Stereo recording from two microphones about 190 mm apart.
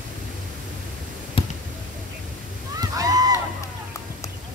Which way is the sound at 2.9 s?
20° right (ahead or behind).